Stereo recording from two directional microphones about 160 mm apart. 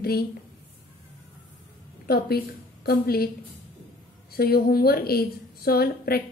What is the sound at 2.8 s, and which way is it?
Speech, 75° left (ahead or behind).